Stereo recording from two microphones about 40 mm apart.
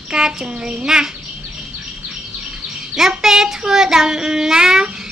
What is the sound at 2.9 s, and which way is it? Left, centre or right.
Child singing, centre.